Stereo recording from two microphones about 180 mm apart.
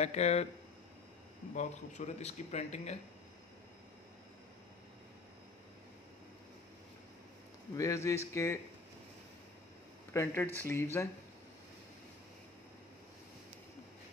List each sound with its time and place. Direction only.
0.0 s speech: 40° left (ahead or behind)
1.5 s speech: 40° left (ahead or behind)
7.7 s speech: 15° left (ahead or behind)
10.1 s speech: 15° left (ahead or behind)